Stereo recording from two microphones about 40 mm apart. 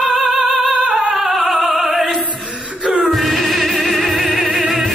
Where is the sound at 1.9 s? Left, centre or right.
Centre.